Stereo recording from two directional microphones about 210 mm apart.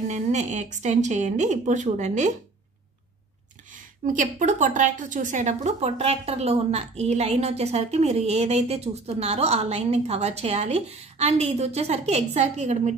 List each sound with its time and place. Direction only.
0.1 s a woman's voice: 35° right (ahead or behind)
3.7 s a woman's voice: 40° right (ahead or behind)